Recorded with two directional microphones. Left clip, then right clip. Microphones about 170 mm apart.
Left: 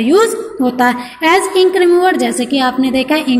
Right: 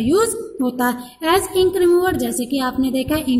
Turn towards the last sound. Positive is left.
turn(degrees=-30)  # may be behind; listen again after turning